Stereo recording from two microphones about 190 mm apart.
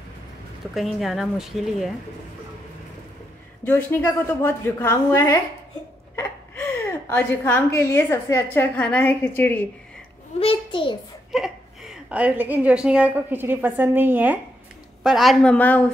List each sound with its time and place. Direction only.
0.9 s speech: centre (ahead or behind)
3.6 s a woman's voice: 10° left (ahead or behind)
10.4 s a child's voice: 30° left (ahead or behind)
11.3 s a woman's voice: centre (ahead or behind)